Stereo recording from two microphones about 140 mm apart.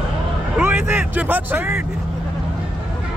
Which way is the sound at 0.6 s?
15° right (ahead or behind).